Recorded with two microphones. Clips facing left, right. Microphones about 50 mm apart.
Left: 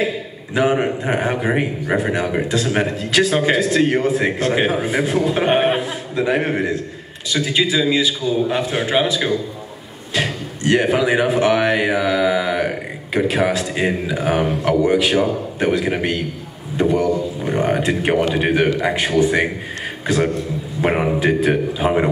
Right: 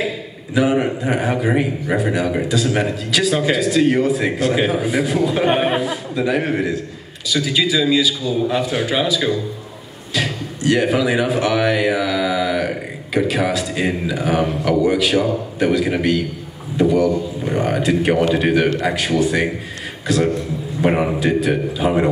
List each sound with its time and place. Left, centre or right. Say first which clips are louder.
0.6 s speech: even; left
2.4 s a man's voice: even; left; by 22.1 s centre